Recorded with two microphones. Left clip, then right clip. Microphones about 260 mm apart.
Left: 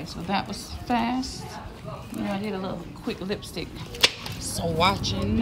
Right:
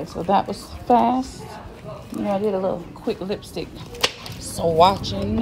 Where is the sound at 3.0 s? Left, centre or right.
Centre.